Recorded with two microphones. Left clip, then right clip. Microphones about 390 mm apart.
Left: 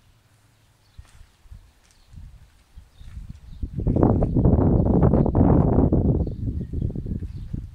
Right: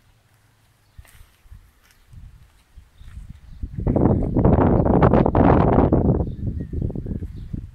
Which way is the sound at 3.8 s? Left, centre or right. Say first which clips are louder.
Right 1 dB; right.